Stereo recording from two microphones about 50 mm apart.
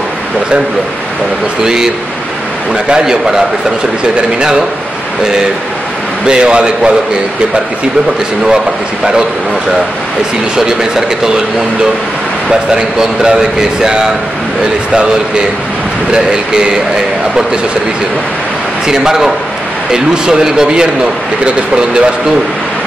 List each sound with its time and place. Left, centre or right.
1.6 s speech: centre
6.2 s a man's voice: centre
10.5 s speech: centre
12.4 s speech: centre
16.1 s speech: centre
18.9 s speech: centre